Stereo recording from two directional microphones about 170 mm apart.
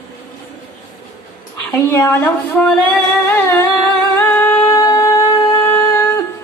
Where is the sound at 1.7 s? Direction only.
15° left (ahead or behind).